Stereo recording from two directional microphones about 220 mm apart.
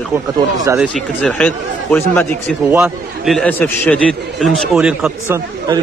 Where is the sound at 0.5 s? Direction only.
15° right (ahead or behind).